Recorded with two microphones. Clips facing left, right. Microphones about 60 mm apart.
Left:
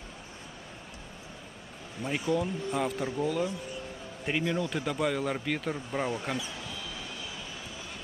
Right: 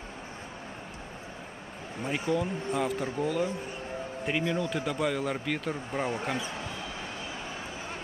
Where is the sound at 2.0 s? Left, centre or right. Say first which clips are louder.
Even; right.